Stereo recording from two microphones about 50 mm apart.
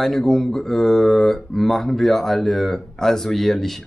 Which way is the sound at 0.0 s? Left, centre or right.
Centre.